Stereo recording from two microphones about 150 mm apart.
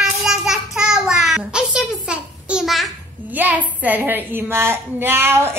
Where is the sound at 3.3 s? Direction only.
10° right (ahead or behind).